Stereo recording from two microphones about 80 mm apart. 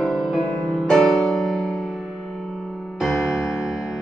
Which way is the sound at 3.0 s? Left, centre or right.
Centre.